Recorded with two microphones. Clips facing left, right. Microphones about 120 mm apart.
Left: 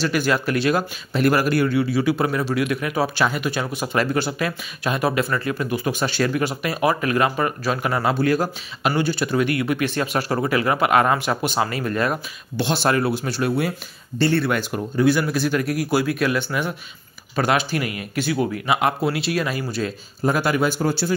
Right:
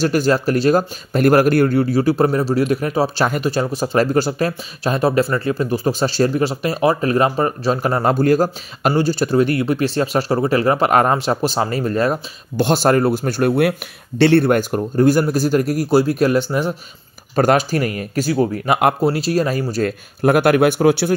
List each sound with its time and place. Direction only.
0.0 s speech: 40° right (ahead or behind)
13.6 s speech: 70° right (ahead or behind)
14.4 s speech: 45° right (ahead or behind)
19.0 s speech: 40° right (ahead or behind)
20.2 s speech: 60° right (ahead or behind)